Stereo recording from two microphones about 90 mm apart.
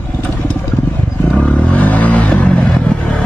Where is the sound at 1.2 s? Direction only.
10° left (ahead or behind).